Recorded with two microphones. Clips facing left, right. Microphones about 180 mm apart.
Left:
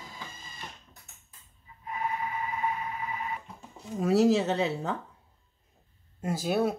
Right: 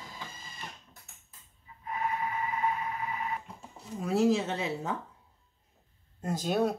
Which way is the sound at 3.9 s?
80° left.